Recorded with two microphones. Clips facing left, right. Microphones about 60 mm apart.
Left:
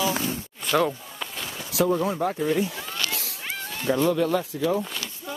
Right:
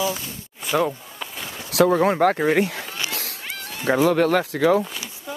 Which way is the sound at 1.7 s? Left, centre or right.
Right.